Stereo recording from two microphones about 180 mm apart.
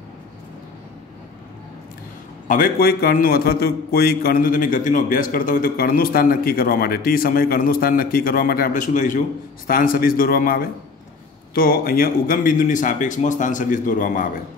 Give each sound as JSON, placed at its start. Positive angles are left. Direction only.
{"t": 2.4, "sound": "a man's voice", "side_deg": 50}